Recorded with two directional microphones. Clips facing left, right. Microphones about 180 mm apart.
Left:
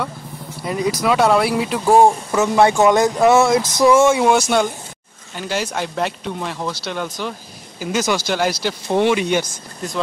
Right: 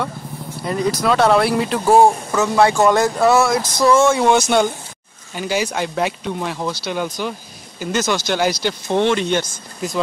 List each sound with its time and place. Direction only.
0.7 s speech: 10° left (ahead or behind)
4.3 s speech: centre (ahead or behind)